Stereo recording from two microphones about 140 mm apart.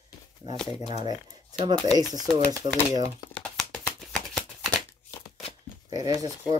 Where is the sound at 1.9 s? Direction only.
25° right (ahead or behind).